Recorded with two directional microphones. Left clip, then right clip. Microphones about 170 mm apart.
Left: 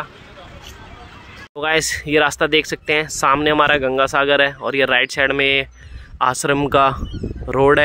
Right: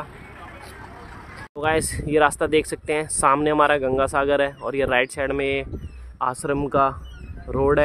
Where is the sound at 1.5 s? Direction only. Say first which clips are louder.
Left 4 dB; 5° left (ahead or behind); by 7.8 s 20° left (ahead or behind).